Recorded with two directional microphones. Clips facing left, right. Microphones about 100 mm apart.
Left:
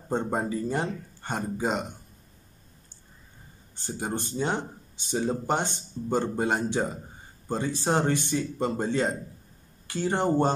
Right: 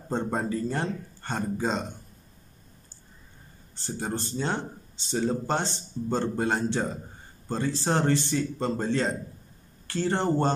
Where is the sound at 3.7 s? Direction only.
15° left (ahead or behind).